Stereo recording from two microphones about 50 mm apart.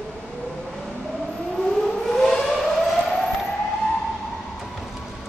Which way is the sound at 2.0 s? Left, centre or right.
Centre.